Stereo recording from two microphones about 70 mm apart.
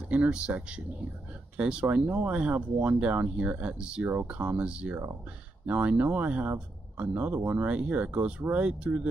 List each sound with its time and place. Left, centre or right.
0.1 s speech: centre
2.0 s speech: right